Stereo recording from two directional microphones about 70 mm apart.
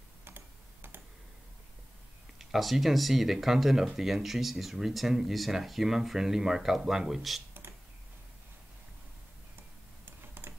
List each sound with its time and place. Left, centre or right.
2.3 s speech: centre
10.0 s computer keyboard: right